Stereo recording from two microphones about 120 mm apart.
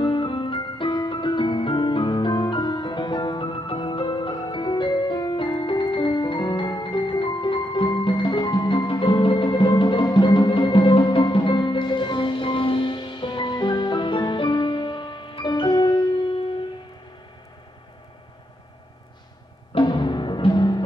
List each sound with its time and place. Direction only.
0.0 s keyboard: 45° left (ahead or behind)
19.7 s timpani: 40° left (ahead or behind)